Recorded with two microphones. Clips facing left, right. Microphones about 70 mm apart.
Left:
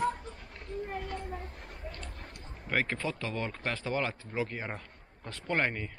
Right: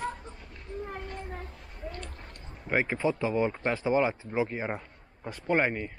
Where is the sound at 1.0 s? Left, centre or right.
Left.